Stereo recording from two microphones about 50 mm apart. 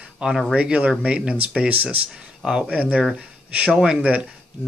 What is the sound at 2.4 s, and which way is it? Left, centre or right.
Speech, centre.